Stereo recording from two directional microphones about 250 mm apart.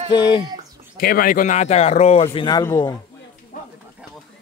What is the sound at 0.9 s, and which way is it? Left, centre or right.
Speech, left.